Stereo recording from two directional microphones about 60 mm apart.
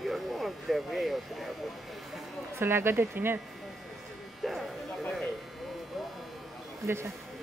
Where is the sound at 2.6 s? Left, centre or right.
Right.